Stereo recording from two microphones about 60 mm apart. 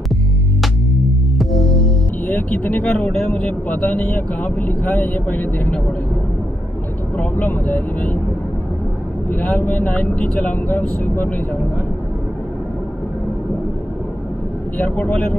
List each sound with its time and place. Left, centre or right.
1.4 s music: centre
2.2 s speech: left
7.6 s speech: left
9.3 s speech: left
14.8 s speech: left